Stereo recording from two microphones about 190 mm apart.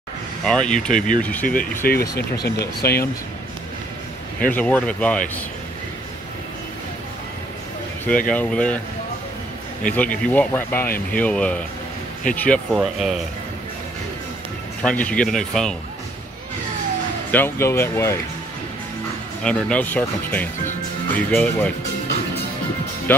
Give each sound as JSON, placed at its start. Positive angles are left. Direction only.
{"t": 0.5, "sound": "speech", "side_deg": 5}
{"t": 1.9, "sound": "speech", "side_deg": 55}
{"t": 4.5, "sound": "speech", "side_deg": 5}
{"t": 8.3, "sound": "speech", "side_deg": 5}
{"t": 9.9, "sound": "speech", "side_deg": 5}
{"t": 14.8, "sound": "speech", "side_deg": 5}
{"t": 17.3, "sound": "speech", "side_deg": 10}
{"t": 19.4, "sound": "speech", "side_deg": 5}